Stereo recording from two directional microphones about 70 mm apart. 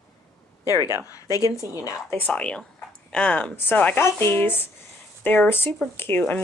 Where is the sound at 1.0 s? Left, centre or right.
Left.